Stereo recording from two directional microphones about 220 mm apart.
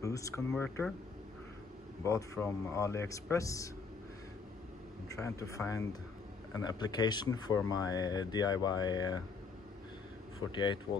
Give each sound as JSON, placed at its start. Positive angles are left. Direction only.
{"t": 0.0, "sound": "a sound", "side_deg": 15}
{"t": 0.5, "sound": "speech", "side_deg": 5}
{"t": 2.0, "sound": "speech", "side_deg": 15}
{"t": 5.0, "sound": "speech", "side_deg": 15}
{"t": 10.5, "sound": "speech", "side_deg": 20}